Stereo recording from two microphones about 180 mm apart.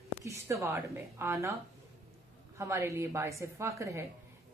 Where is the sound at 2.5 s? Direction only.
15° right (ahead or behind).